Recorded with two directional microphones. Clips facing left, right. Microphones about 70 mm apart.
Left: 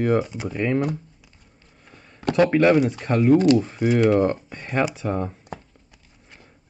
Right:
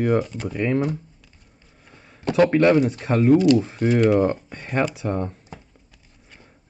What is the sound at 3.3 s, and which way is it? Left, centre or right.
Speech, left.